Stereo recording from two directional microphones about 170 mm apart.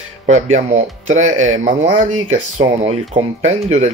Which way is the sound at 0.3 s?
45° right (ahead or behind).